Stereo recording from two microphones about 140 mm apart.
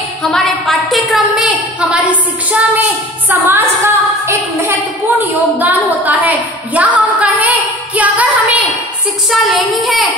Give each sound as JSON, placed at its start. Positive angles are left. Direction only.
{"t": 0.2, "sound": "a sound", "side_deg": 5}
{"t": 3.3, "sound": "a woman's voice", "side_deg": -15}
{"t": 9.3, "sound": "speech", "side_deg": 0}